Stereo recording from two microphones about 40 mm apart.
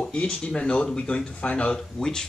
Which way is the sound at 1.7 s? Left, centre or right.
Centre.